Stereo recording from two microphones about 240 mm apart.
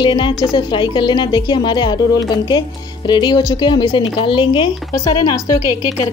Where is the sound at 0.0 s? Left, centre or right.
Centre.